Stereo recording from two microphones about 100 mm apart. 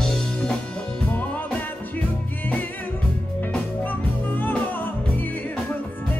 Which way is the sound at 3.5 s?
20° left (ahead or behind).